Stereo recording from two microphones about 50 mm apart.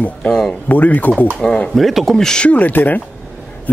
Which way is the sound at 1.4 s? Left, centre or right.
Centre.